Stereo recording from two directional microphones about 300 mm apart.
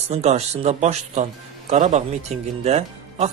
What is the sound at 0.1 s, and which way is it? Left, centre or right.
Speech, right.